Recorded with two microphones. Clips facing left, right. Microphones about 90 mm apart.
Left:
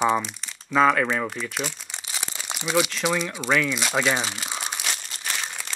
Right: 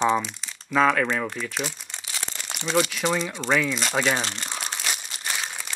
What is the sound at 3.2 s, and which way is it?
Speech, 5° left (ahead or behind).